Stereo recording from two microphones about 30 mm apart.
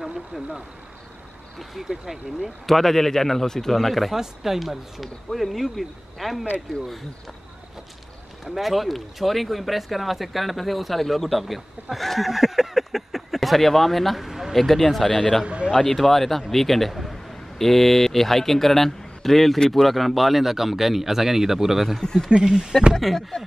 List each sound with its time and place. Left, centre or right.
2.6 s a man's voice: centre
3.7 s speech: centre
4.1 s speech: centre
8.5 s speech: centre
12.3 s a sound: centre
14.5 s speech: centre
15.0 s speech: left
15.4 s a man's voice: right
15.8 s a man's voice: centre
22.0 s speech: left
22.3 s speech: right
22.9 s a man's voice: centre